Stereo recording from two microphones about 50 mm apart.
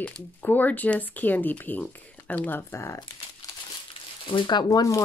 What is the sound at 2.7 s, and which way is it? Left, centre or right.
Speech, left.